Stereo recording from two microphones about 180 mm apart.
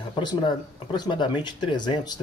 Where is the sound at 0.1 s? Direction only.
25° left (ahead or behind).